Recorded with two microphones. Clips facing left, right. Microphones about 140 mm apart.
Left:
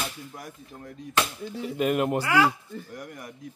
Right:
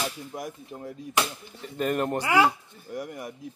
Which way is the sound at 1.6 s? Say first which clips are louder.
Left 2 dB; 5° left (ahead or behind).